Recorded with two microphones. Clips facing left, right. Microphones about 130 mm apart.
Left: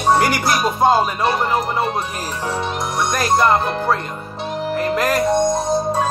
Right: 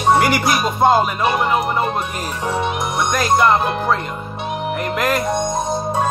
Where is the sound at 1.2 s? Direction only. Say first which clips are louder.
Right 1 dB; 10° right (ahead or behind).